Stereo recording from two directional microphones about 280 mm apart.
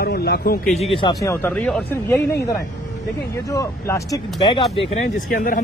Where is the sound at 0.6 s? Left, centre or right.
Centre.